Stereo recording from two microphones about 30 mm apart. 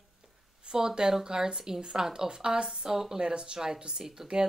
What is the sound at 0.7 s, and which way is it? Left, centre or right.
Speech, right.